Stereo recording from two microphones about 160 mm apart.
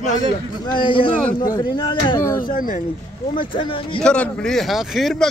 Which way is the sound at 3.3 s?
30° left (ahead or behind).